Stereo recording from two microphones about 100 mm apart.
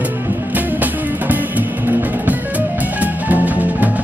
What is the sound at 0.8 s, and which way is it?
Music, 15° right (ahead or behind).